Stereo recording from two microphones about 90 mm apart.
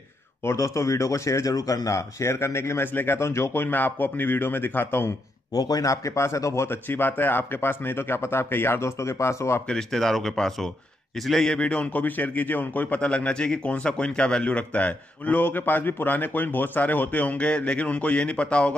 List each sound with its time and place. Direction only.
0.4 s speech: 30° left (ahead or behind)
5.5 s speech: 45° left (ahead or behind)
9.7 s a man's voice: 5° left (ahead or behind)